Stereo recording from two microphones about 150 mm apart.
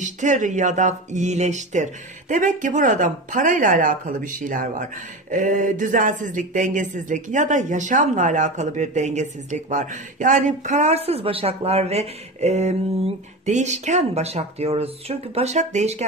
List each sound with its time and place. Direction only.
0.0 s speech: 55° right (ahead or behind)